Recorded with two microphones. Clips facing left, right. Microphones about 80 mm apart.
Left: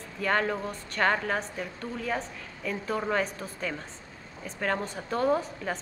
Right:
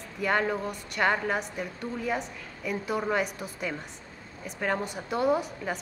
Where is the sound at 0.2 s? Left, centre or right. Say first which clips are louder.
Right 1 dB; centre.